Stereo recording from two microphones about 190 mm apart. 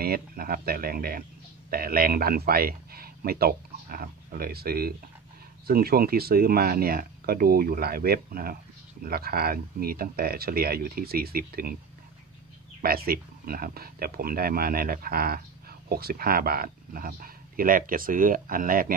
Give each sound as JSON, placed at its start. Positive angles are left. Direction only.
{"t": 0.0, "sound": "speech", "side_deg": -50}
{"t": 12.8, "sound": "speech", "side_deg": -50}